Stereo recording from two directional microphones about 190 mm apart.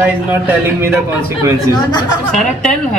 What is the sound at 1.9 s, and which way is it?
Speech, 20° left (ahead or behind).